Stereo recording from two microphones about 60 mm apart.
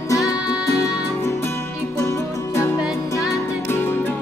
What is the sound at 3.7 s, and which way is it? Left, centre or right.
Music, left.